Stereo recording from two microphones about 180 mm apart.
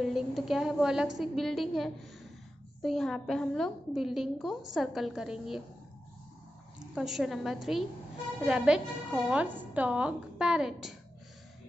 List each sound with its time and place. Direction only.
0.0 s a woman's voice: centre (ahead or behind)
7.0 s a woman's voice: centre (ahead or behind)